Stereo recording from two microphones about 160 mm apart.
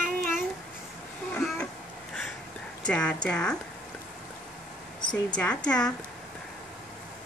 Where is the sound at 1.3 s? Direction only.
5° left (ahead or behind).